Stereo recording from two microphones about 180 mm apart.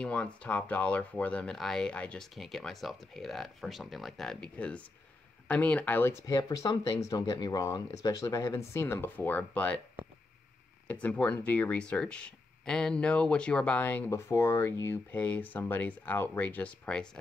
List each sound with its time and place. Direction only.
0.0 s speech: 5° left (ahead or behind)
10.9 s speech: 10° left (ahead or behind)